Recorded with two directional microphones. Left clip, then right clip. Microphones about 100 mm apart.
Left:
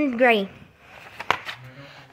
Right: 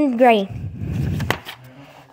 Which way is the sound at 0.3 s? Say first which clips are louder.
Right 5 dB; 40° right (ahead or behind).